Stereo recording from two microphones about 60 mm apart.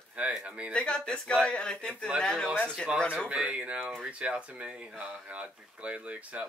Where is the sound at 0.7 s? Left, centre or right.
Centre.